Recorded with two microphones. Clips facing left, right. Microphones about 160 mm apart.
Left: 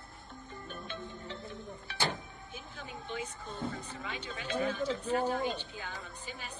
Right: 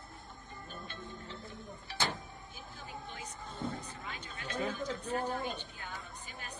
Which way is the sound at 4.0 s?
90° left.